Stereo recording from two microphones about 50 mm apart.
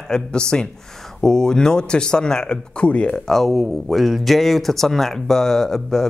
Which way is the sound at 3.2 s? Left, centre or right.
Centre.